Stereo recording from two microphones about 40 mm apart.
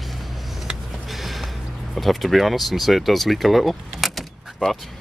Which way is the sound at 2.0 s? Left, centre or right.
Centre.